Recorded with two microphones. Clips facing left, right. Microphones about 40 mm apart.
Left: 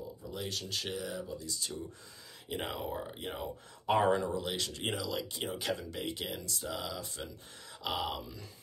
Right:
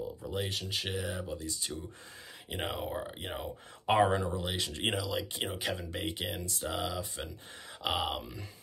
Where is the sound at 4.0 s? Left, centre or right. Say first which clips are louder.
Right 1 dB; centre; by 5.0 s right.